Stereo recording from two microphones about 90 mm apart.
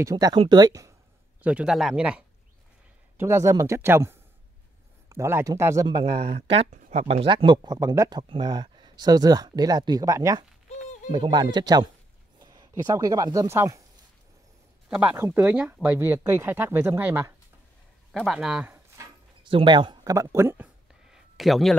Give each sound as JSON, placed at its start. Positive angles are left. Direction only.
{"t": 0.0, "sound": "speech", "side_deg": -40}
{"t": 1.4, "sound": "speech", "side_deg": -10}
{"t": 3.2, "sound": "speech", "side_deg": -30}
{"t": 5.9, "sound": "speech", "side_deg": -65}
{"t": 7.2, "sound": "speech", "side_deg": -80}
{"t": 11.1, "sound": "speech", "side_deg": -65}
{"t": 15.3, "sound": "speech", "side_deg": -10}
{"t": 18.2, "sound": "a man's voice", "side_deg": -5}
{"t": 19.4, "sound": "speech", "side_deg": -65}
{"t": 20.0, "sound": "speech", "side_deg": -40}
{"t": 21.1, "sound": "a sound", "side_deg": 0}